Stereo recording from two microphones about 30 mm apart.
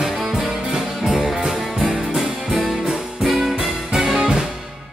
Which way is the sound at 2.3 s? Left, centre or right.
Right.